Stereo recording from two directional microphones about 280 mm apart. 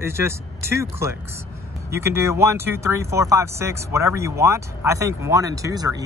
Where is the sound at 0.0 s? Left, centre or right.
Centre.